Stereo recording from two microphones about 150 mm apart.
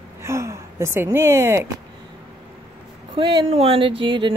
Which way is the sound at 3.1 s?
30° right (ahead or behind).